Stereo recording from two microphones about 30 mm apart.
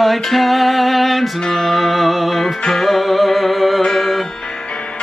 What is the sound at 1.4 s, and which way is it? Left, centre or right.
Music, centre.